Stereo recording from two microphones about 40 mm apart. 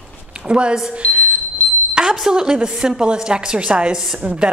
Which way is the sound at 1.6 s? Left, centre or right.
Left.